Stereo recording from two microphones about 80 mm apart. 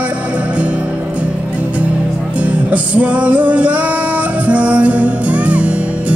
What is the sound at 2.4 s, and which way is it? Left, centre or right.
Music, centre.